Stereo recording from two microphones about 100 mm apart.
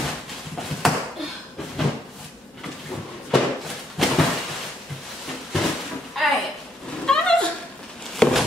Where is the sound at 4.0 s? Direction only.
Centre (ahead or behind).